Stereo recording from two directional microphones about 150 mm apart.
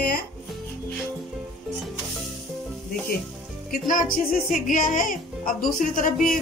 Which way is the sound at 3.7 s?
65° left (ahead or behind).